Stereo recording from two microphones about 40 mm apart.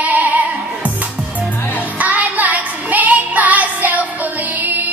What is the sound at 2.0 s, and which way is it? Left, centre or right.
Music, right.